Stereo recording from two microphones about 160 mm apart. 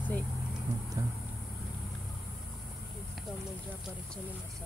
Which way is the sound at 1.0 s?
20° right (ahead or behind).